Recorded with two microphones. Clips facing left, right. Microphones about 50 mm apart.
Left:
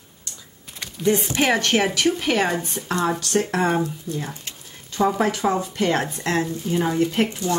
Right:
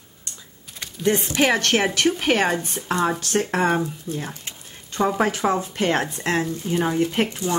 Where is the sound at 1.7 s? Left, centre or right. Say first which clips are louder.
Even; centre; by 6.0 s right.